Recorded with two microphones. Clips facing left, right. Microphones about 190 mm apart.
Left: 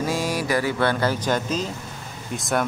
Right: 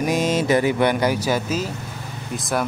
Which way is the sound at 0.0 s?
20° right (ahead or behind).